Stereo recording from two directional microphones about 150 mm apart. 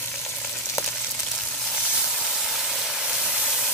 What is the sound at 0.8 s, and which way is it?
Frying, 20° left (ahead or behind).